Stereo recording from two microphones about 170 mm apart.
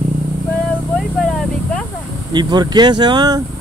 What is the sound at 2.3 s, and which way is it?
Speech, 25° right (ahead or behind).